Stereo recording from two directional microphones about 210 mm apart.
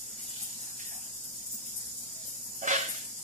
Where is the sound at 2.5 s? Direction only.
35° right (ahead or behind).